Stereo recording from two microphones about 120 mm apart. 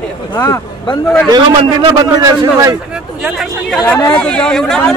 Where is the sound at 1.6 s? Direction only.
50° right (ahead or behind).